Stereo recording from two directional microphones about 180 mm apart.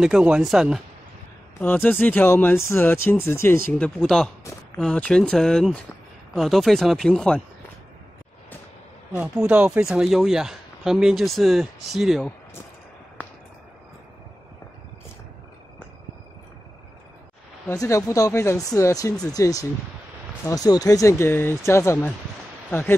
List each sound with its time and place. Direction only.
0.0 s speech: 5° right (ahead or behind)
1.6 s speech: 10° left (ahead or behind)
3.7 s speech: 5° left (ahead or behind)
9.1 s speech: 10° right (ahead or behind)
17.6 s speech: 15° left (ahead or behind)